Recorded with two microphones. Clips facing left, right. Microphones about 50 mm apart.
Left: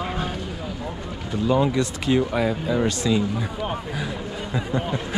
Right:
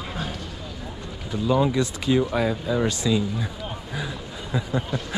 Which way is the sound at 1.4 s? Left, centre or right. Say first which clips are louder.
Left 1 dB; left.